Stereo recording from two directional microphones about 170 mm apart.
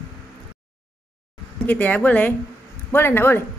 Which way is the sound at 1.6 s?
10° left (ahead or behind).